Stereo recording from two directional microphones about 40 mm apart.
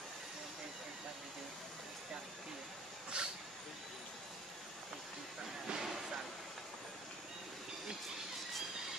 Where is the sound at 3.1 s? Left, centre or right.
Right.